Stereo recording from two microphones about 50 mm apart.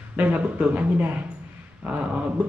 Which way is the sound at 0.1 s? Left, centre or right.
Right.